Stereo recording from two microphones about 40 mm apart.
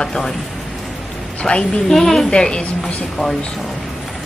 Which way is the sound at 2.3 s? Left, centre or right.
Left.